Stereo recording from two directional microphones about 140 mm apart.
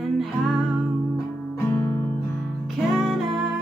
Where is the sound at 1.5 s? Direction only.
10° left (ahead or behind).